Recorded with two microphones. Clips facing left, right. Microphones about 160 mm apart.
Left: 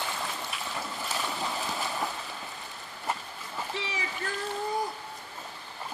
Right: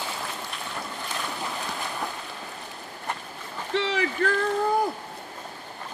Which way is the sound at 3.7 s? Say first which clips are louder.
Right 13 dB; 70° right (ahead or behind).